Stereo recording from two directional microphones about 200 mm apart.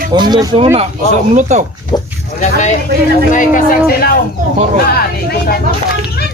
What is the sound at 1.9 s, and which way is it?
Speech, 20° left (ahead or behind).